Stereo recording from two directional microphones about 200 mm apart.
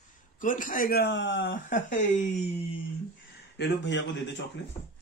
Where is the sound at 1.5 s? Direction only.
40° left (ahead or behind).